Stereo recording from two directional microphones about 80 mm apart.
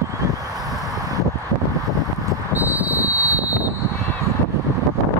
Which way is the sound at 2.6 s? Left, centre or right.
Right.